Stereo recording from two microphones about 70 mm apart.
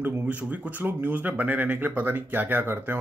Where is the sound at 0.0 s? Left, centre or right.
Right.